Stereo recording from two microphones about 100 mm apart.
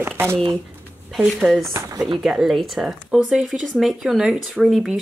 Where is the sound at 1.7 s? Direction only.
30° right (ahead or behind).